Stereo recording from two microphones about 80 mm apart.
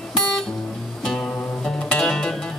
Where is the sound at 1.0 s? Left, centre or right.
Centre.